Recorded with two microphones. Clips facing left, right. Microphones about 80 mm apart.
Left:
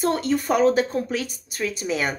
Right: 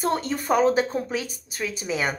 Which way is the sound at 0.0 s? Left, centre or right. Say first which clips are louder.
Left 3 dB; right.